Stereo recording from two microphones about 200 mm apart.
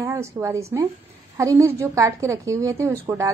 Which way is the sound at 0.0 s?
15° right (ahead or behind).